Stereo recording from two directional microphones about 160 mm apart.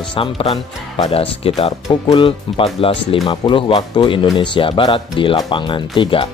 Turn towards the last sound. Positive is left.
turn(degrees=30)  # may be behind; listen again after turning